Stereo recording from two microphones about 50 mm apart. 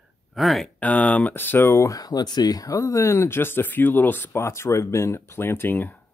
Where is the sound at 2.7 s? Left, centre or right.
Left.